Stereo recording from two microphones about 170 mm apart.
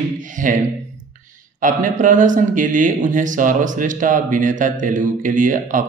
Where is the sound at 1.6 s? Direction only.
50° right (ahead or behind).